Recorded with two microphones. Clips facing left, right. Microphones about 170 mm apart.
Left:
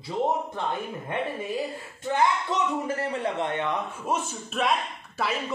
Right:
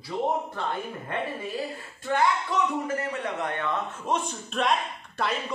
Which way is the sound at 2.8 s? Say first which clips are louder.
Left 2 dB; 30° left (ahead or behind).